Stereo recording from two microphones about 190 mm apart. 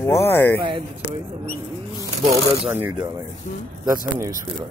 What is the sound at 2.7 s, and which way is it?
Speech, 10° right (ahead or behind).